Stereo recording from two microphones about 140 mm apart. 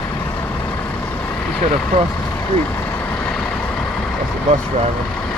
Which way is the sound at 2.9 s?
15° left (ahead or behind).